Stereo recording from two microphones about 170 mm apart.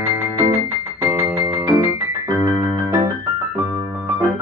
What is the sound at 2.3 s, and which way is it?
Keyboard, 20° right (ahead or behind).